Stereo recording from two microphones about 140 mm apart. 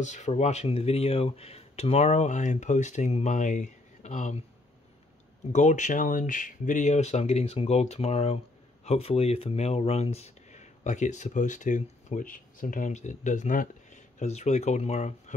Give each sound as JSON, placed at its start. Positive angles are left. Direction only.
{"t": 0.0, "sound": "speech", "side_deg": 55}
{"t": 5.5, "sound": "speech", "side_deg": 60}